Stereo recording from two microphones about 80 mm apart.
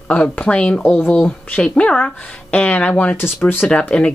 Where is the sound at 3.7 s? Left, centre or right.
Centre.